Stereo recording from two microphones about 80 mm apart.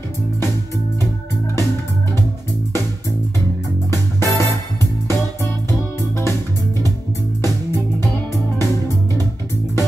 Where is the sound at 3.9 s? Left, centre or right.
Left.